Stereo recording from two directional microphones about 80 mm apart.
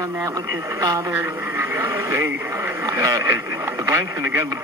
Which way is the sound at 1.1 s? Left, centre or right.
Right.